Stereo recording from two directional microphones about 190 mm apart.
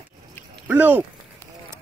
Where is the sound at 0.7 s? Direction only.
10° right (ahead or behind).